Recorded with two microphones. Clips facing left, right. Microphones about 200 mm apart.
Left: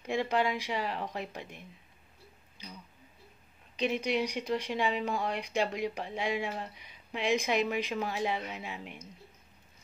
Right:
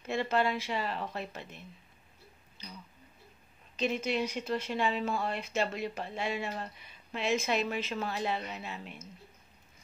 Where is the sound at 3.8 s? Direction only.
15° left (ahead or behind).